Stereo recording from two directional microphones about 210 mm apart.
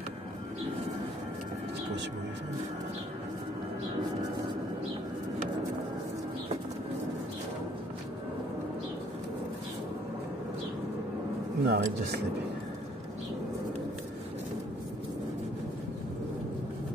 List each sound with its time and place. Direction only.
11.6 s speech: 45° right (ahead or behind)